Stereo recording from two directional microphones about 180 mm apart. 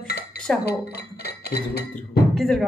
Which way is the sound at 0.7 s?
60° left (ahead or behind).